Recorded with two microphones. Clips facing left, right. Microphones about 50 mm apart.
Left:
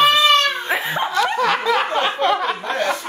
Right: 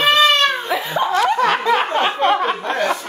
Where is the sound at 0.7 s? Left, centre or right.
Left.